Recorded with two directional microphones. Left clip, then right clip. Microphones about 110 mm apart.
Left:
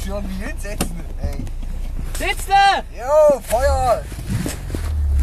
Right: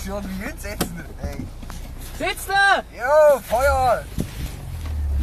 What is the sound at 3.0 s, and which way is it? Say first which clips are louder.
Speech: left 2 dB; 10° right (ahead or behind).